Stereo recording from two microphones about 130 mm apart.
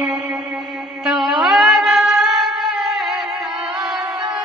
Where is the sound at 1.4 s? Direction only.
Centre (ahead or behind).